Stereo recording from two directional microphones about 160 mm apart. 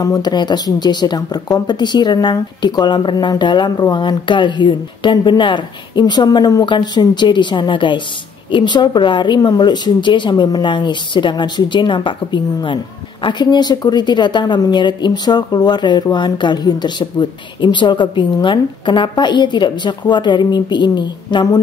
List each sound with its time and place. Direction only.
0.0 s speech: 25° left (ahead or behind)